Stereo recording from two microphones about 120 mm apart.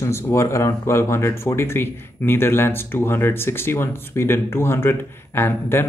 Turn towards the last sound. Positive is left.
turn(degrees=20)  # may be behind; listen again after turning